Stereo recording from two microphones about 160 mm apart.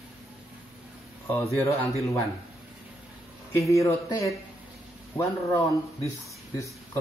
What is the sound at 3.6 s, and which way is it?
Speech, 20° left (ahead or behind).